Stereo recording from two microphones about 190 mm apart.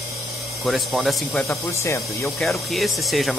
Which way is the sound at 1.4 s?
15° left (ahead or behind).